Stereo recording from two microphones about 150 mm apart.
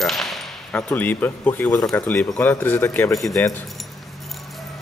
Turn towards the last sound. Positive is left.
turn(degrees=15)  # may be behind; listen again after turning